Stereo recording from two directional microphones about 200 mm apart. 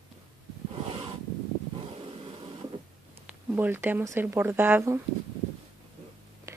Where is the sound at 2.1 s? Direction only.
25° right (ahead or behind).